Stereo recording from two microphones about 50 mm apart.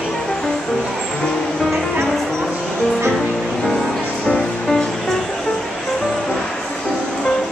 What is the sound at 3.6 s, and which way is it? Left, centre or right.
Music, centre.